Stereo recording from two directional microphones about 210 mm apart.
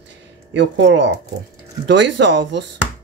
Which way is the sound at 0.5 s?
60° right (ahead or behind).